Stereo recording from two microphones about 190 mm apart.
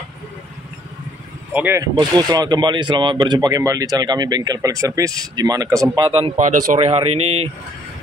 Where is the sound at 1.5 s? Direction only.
10° right (ahead or behind).